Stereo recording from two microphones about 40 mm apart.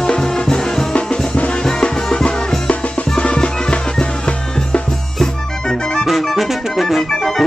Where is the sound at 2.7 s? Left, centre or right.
Left.